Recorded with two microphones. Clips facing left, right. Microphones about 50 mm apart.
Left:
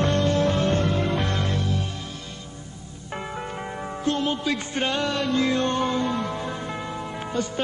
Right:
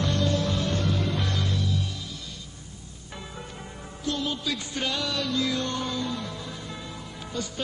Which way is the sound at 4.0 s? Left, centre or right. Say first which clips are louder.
Left 5 dB; left.